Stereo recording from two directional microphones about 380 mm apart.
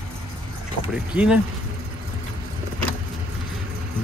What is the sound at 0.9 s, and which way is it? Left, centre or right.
Speech, centre.